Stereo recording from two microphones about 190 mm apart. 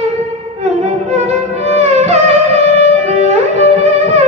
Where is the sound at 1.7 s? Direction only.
35° right (ahead or behind).